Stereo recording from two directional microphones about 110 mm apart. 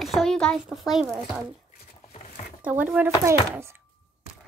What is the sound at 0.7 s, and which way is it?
Speech, 5° right (ahead or behind).